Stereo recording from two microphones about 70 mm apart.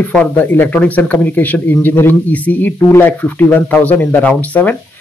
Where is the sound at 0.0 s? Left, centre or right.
Centre.